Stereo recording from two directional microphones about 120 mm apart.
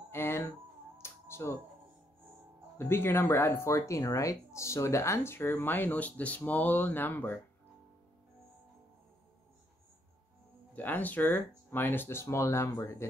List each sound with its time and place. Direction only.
0.1 s a sound: 20° left (ahead or behind)
0.9 s music: 20° left (ahead or behind)
2.8 s speech: 20° left (ahead or behind)
10.7 s speech: 15° left (ahead or behind)